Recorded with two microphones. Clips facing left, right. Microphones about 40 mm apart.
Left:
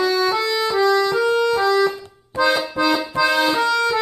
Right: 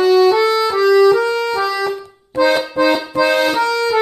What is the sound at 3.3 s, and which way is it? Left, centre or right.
Music, right.